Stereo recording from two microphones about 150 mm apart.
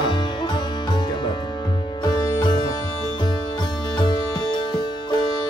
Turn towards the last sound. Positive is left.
turn(degrees=30)  # may be behind; listen again after turning